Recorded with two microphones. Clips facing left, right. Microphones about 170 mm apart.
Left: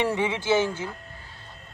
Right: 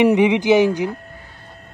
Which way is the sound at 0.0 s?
15° right (ahead or behind).